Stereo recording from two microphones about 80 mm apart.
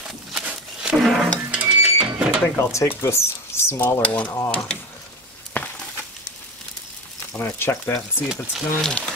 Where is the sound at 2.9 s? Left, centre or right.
Left.